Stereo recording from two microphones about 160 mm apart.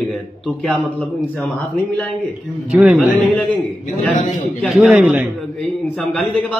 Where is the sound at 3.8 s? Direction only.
50° left (ahead or behind).